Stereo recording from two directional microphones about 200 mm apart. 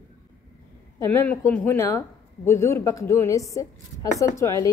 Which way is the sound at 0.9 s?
10° left (ahead or behind).